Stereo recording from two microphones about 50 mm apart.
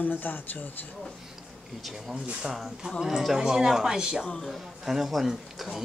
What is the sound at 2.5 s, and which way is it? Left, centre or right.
Speech, centre.